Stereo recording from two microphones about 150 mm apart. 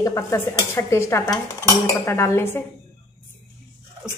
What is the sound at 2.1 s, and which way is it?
Speech, 15° left (ahead or behind).